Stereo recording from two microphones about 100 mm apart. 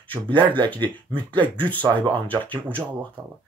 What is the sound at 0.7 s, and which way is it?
Speech, 50° right (ahead or behind).